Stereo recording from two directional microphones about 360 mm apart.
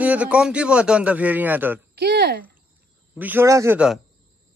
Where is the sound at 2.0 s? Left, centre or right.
Right.